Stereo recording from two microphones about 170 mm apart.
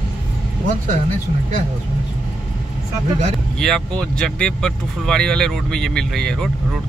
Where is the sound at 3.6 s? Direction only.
5° left (ahead or behind).